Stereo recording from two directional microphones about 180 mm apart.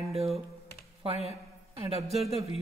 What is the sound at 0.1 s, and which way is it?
Computer keyboard, 35° right (ahead or behind).